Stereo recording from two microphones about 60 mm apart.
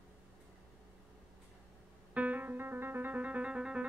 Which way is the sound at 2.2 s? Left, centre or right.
Right.